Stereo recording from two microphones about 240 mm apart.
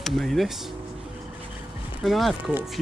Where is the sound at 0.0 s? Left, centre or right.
Centre.